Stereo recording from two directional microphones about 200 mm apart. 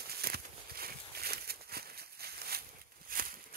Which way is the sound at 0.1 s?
50° right (ahead or behind).